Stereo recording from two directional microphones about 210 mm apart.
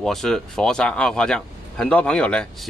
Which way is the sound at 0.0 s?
Centre (ahead or behind).